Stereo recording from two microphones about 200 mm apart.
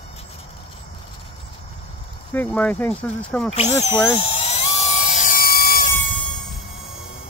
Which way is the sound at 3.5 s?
35° left (ahead or behind).